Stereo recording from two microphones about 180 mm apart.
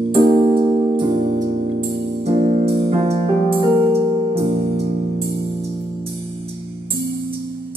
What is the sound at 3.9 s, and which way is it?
Keyboard, 30° right (ahead or behind).